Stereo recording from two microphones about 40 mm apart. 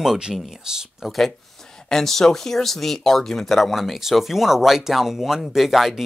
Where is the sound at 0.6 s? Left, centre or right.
Centre.